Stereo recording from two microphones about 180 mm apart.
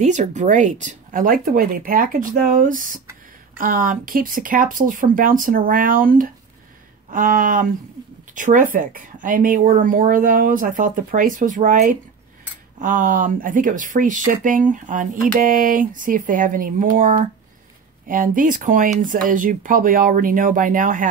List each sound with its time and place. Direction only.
0.0 s speech: 40° right (ahead or behind)